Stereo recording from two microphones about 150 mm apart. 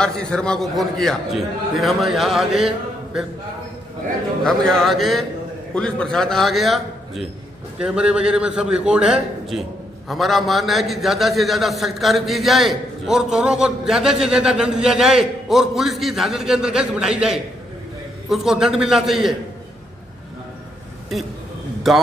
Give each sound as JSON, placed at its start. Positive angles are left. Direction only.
{"t": 0.0, "sound": "a man's voice", "side_deg": 5}
{"t": 4.5, "sound": "a man's voice", "side_deg": 5}
{"t": 21.9, "sound": "a man's voice", "side_deg": 0}